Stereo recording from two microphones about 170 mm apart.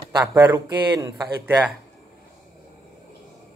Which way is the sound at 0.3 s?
20° right (ahead or behind).